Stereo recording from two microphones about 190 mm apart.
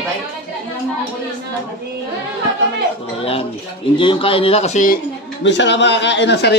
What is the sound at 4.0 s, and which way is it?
Speech, 25° left (ahead or behind).